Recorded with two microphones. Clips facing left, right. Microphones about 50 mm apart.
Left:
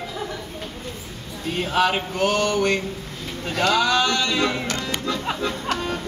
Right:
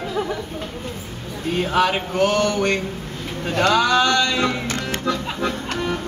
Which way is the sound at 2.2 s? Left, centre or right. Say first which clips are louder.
Right 3 dB; left.